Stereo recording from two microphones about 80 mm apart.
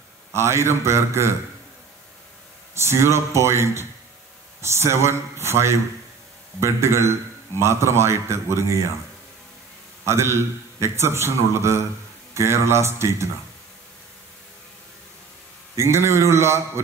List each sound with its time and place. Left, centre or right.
0.3 s a man's voice: right
2.7 s a man's voice: right
10.0 s a man's voice: right
15.7 s a man's voice: right